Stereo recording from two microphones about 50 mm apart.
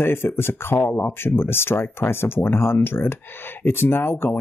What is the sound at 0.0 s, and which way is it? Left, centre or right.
Speech, left.